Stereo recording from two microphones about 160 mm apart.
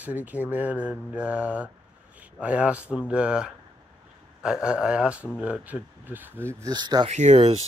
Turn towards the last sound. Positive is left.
turn(degrees=-40)  # may be behind; listen again after turning